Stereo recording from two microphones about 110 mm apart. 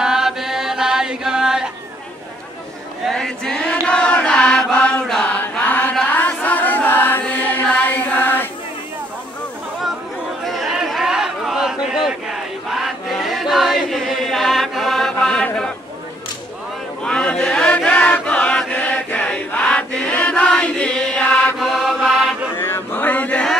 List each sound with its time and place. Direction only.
0.0 s chant: 5° right (ahead or behind)
3.1 s choir: 5° left (ahead or behind)
3.8 s chant: 5° left (ahead or behind)
10.4 s a sound: centre (ahead or behind)
15.2 s chant: 5° left (ahead or behind)
17.0 s chant: 10° left (ahead or behind)
21.5 s mantra: centre (ahead or behind)
22.6 s chant: 20° left (ahead or behind)